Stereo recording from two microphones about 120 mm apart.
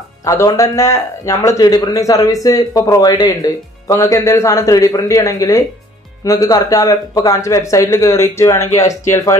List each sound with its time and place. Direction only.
0.2 s speech: 25° left (ahead or behind)